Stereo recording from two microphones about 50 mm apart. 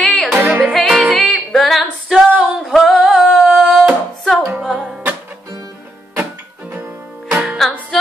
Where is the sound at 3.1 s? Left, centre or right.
Centre.